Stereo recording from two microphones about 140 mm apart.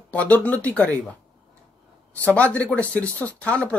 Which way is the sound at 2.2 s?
10° left (ahead or behind).